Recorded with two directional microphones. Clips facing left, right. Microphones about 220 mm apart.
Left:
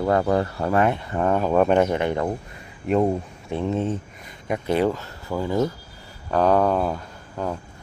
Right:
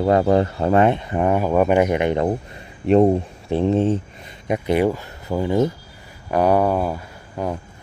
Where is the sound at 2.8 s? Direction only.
30° right (ahead or behind).